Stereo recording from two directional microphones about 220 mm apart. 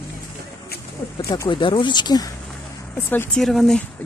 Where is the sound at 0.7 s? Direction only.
45° left (ahead or behind).